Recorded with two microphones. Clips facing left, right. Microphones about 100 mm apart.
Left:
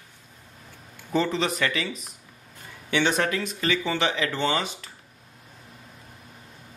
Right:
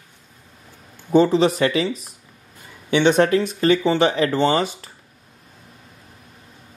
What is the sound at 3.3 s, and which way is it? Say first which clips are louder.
Speech: right 9 dB; 35° right (ahead or behind).